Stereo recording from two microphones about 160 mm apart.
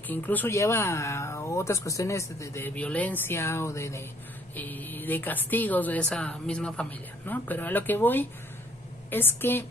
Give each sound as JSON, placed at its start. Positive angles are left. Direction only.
{"t": 0.1, "sound": "speech", "side_deg": 10}